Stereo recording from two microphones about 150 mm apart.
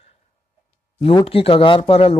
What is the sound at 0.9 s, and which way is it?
Speech, 40° left (ahead or behind).